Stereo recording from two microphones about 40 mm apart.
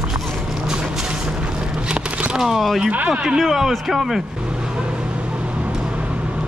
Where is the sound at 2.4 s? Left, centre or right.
Centre.